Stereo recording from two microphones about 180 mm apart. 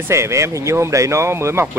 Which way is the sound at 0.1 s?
15° right (ahead or behind).